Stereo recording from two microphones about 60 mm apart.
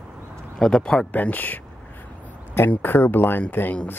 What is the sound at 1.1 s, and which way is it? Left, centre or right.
Speech, left.